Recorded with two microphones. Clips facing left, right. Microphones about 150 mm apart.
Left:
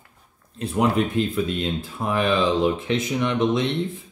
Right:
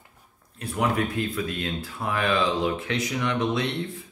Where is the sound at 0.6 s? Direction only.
25° left (ahead or behind).